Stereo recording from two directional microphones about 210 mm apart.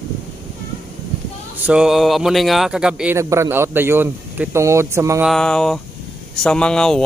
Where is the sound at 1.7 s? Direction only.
5° right (ahead or behind).